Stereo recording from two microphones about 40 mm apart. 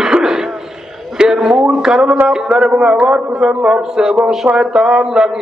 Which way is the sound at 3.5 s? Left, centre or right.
Right.